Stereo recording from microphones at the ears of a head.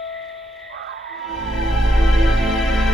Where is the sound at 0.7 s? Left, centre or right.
Right.